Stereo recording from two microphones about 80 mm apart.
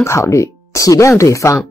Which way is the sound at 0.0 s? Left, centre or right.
Left.